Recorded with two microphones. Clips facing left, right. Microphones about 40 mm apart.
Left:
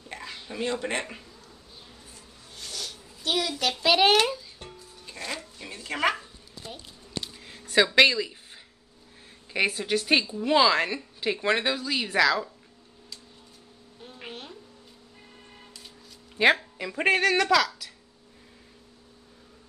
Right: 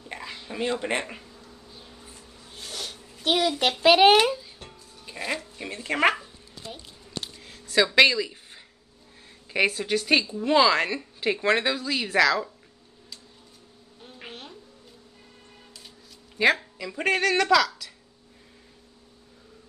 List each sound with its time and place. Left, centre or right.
0.1 s a sound: centre
2.5 s a sound: right
3.9 s speech: centre
5.0 s music: centre
5.7 s speech: right
7.9 s speech: centre
9.7 s speech: centre
14.0 s a sound: centre
16.7 s speech: left
17.1 s speech: centre